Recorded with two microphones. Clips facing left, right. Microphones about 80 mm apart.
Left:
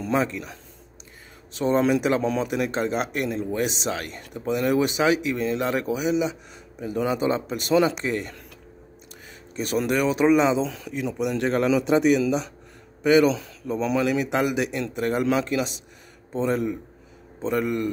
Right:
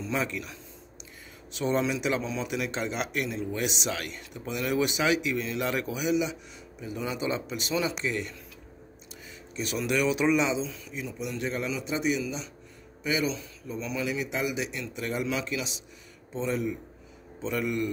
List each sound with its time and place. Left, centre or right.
0.1 s speech: left
9.6 s speech: left
10.6 s a man's voice: left